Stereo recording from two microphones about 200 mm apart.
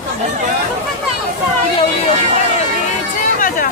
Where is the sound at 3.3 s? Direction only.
40° left (ahead or behind).